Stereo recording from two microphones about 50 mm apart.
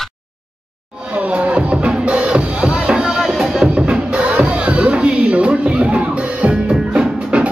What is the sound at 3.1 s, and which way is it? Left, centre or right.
Music, centre.